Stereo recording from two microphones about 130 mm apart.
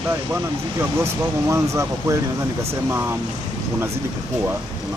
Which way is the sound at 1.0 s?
20° right (ahead or behind).